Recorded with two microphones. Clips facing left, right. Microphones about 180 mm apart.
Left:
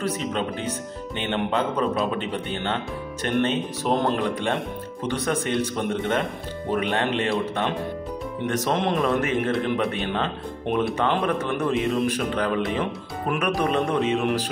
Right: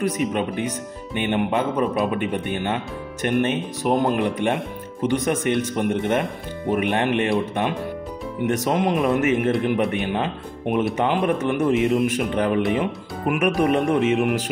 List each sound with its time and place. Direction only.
0.0 s a man's voice: 15° right (ahead or behind)